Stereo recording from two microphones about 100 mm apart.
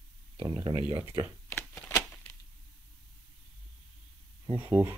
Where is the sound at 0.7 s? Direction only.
40° right (ahead or behind).